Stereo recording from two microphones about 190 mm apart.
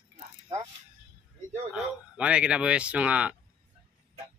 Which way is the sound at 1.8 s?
5° right (ahead or behind).